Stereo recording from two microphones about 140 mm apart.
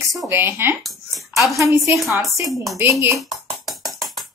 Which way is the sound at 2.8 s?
20° right (ahead or behind).